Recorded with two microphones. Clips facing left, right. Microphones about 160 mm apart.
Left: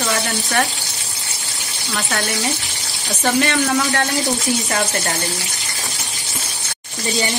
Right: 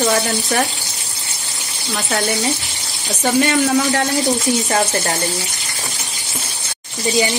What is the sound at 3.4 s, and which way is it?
Speech, 25° right (ahead or behind).